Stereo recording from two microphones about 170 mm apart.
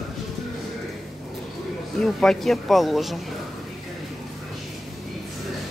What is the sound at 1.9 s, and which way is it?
Speech, 5° left (ahead or behind).